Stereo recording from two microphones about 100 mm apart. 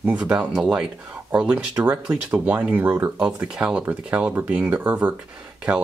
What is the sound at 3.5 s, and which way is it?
Speech, 10° right (ahead or behind).